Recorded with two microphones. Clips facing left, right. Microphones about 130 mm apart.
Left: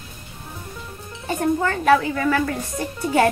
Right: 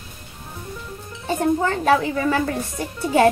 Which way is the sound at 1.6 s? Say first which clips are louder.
Left 1 dB; 25° right (ahead or behind).